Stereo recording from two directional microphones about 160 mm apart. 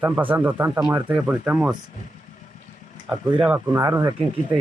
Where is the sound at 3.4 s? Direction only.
15° right (ahead or behind).